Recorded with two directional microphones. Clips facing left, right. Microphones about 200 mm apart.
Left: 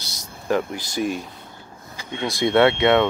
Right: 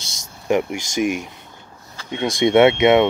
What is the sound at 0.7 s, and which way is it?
Speech, 85° right.